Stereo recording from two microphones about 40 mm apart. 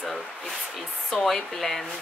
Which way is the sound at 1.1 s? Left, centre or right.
Centre.